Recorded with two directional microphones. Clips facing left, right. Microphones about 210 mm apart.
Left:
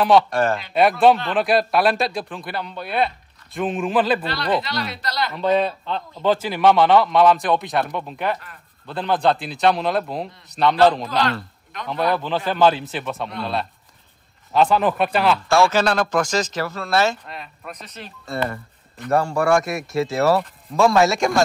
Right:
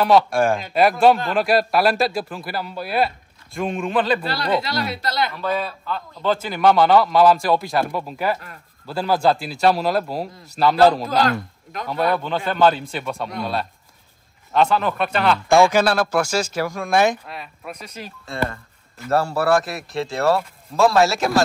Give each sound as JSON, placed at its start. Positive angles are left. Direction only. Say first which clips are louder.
{"t": 0.0, "sound": "speech", "louder": "even", "side_deg": -5}
{"t": 4.2, "sound": "speech", "louder": "right 1 dB", "side_deg": -40}
{"t": 5.3, "sound": "speech", "louder": "left 5 dB", "side_deg": 25}
{"t": 6.2, "sound": "speech", "louder": "left 1 dB", "side_deg": 0}
{"t": 11.8, "sound": "speech", "louder": "right 1 dB", "side_deg": 0}
{"t": 15.4, "sound": "speech", "louder": "right 6 dB", "side_deg": -15}